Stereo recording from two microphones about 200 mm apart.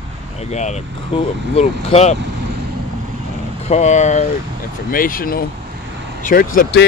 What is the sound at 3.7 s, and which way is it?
Speech, 35° left (ahead or behind).